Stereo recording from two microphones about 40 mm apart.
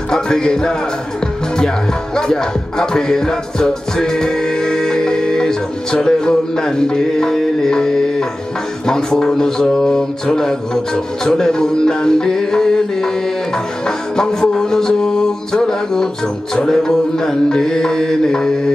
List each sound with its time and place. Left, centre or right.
0.1 s music: centre
2.1 s music: centre
8.8 s mantra: centre
13.8 s music: centre
16.5 s mantra: centre